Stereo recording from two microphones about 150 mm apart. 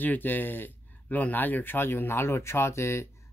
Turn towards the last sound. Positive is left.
turn(degrees=20)  # may be behind; listen again after turning